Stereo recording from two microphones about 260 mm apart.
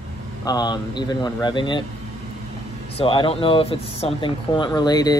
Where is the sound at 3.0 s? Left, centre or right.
Centre.